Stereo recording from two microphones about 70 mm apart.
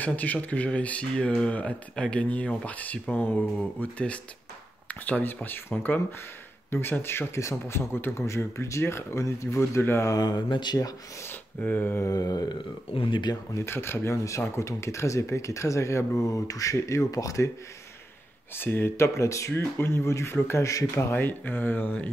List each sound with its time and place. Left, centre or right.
0.0 s a man's voice: left
10.1 s a sound: left
11.6 s speech: left
12.1 s a sound: left
13.6 s speech: left
18.6 s a man's voice: left